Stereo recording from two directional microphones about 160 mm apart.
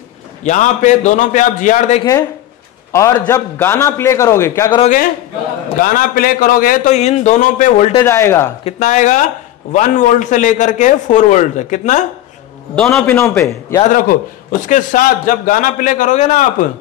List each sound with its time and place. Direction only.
0.4 s a man's voice: 50° left (ahead or behind)
2.9 s a man's voice: 20° left (ahead or behind)
5.8 s a man's voice: 60° left (ahead or behind)
8.0 s a man's voice: 15° left (ahead or behind)
8.6 s a man's voice: 50° left (ahead or behind)
12.7 s a man's voice: 5° left (ahead or behind)
13.8 s a man's voice: 60° left (ahead or behind)